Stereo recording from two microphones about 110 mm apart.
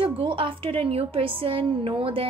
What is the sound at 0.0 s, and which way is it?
A woman's voice, 50° right (ahead or behind).